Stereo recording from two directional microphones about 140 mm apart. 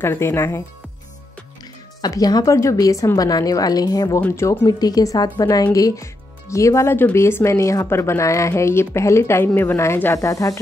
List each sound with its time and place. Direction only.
0.0 s speech: 15° left (ahead or behind)
2.0 s speech: 30° left (ahead or behind)
4.2 s speech: 20° left (ahead or behind)